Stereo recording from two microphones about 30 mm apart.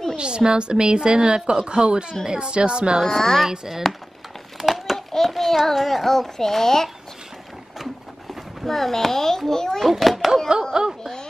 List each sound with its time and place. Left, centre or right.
0.2 s a woman's voice: right
3.2 s a child's voice: centre
3.4 s speech: centre
4.6 s a sound: centre
4.9 s a sound: centre
5.3 s child singing: centre
5.8 s speech: centre
6.0 s a child's voice: centre
8.6 s a child's voice: centre
9.8 s a child's voice: centre
10.8 s a woman's voice: right